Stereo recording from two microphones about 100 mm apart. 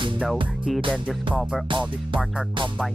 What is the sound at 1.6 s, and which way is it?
Speech, 55° right (ahead or behind).